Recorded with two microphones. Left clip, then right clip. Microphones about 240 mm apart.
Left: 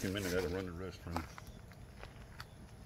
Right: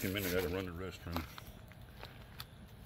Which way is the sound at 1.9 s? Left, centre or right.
Centre.